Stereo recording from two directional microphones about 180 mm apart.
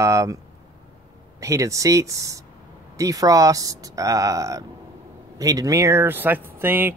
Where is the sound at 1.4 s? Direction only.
15° right (ahead or behind).